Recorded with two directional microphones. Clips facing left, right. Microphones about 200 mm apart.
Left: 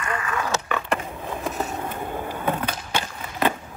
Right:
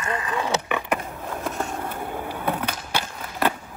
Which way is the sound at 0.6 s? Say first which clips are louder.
Even; 15° right (ahead or behind).